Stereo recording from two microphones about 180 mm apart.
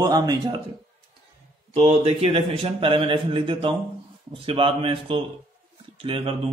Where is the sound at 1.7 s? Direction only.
35° right (ahead or behind).